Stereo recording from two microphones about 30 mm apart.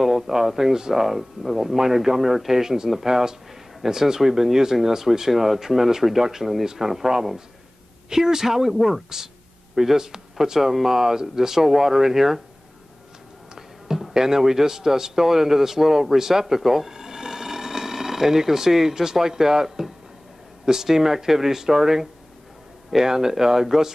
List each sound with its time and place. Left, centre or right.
0.0 s speech: centre
0.7 s speech: right
1.0 s speech: centre
8.7 s speech: centre
9.8 s speech: centre
13.6 s a sound: centre
14.1 s a man's voice: centre